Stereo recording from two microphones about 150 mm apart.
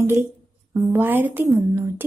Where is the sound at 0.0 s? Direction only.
15° right (ahead or behind).